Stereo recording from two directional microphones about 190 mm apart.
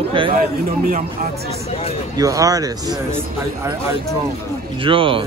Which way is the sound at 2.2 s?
20° right (ahead or behind).